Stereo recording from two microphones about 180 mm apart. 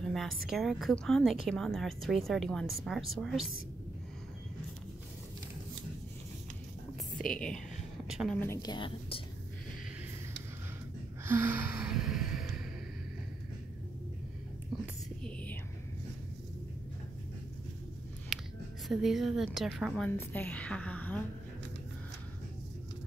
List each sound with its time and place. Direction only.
0.0 s speech: centre (ahead or behind)
7.2 s speech: 5° left (ahead or behind)
8.4 s a woman's voice: 15° left (ahead or behind)
8.7 s a woman's voice: 30° left (ahead or behind)
11.2 s gasp: 10° right (ahead or behind)
15.2 s whispering: 10° left (ahead or behind)
18.3 s a sound: centre (ahead or behind)
18.9 s speech: centre (ahead or behind)
20.1 s a woman's voice: 10° left (ahead or behind)